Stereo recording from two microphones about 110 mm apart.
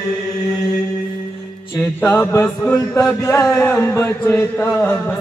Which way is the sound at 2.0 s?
25° left (ahead or behind).